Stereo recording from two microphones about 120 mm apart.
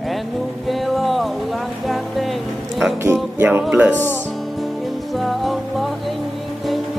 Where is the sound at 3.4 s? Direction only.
15° right (ahead or behind).